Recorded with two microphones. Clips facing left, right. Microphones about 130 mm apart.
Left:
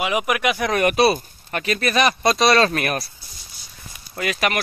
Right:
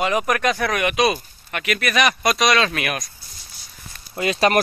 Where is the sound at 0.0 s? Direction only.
10° left (ahead or behind).